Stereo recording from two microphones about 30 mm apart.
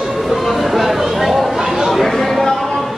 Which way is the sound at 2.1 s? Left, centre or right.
Centre.